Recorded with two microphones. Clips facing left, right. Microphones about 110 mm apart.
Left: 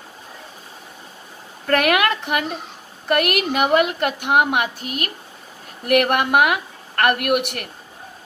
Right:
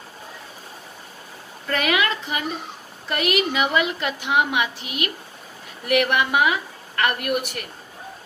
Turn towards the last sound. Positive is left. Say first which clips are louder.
# left 4 dB
turn(degrees=65)  # may be behind; listen again after turning